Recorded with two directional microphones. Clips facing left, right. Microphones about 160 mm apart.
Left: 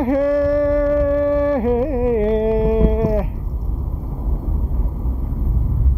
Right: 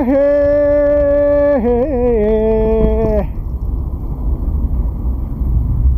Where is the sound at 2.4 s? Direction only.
90° right.